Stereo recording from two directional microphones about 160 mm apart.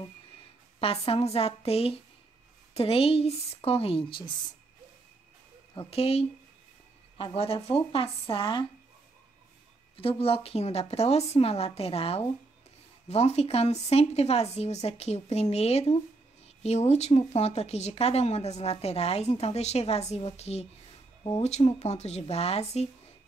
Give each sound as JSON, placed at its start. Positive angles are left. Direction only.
{"t": 0.7, "sound": "speech", "side_deg": 35}
{"t": 5.8, "sound": "speech", "side_deg": 40}
{"t": 9.9, "sound": "speech", "side_deg": 35}